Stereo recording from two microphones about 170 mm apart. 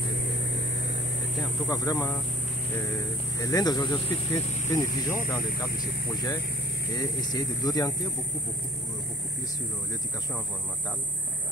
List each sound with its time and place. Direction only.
1.7 s speech: 20° left (ahead or behind)